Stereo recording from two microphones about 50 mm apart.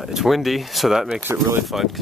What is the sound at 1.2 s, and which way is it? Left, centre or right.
Speech, right.